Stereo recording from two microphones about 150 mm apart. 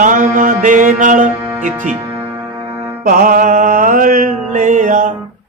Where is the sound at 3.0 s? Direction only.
65° right (ahead or behind).